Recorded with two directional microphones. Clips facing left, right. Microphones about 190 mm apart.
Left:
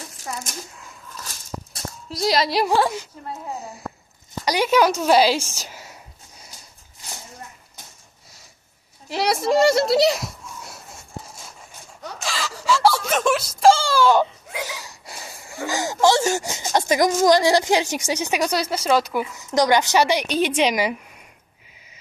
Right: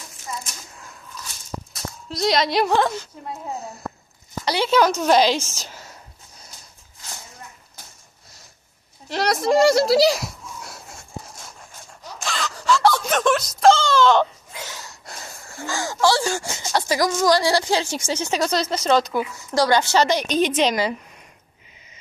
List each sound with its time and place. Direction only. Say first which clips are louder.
2.0 s speech: even; 5° left (ahead or behind)
4.5 s speech: left 1 dB; 10° left (ahead or behind)
9.1 s a sound: right 1 dB; 5° left (ahead or behind)
12.2 s speech: right 1 dB; 5° left (ahead or behind)